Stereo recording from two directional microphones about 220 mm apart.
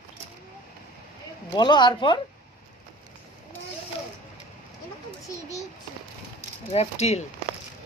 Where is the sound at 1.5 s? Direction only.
20° left (ahead or behind).